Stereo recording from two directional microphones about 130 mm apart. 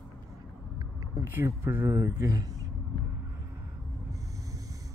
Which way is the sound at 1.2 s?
15° right (ahead or behind).